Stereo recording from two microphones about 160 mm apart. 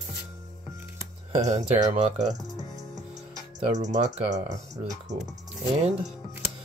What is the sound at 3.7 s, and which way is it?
Speech, 45° right (ahead or behind).